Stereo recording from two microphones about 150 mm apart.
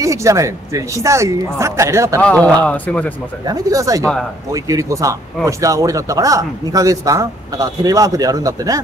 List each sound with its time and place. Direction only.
0.0 s a man's voice: 20° right (ahead or behind)
2.2 s speech: 10° left (ahead or behind)
3.4 s a man's voice: 20° right (ahead or behind)